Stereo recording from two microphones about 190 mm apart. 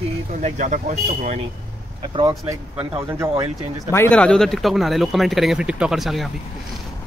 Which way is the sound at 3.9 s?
10° left (ahead or behind).